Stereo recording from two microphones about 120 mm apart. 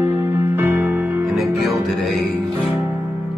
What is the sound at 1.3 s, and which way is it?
Music, centre (ahead or behind).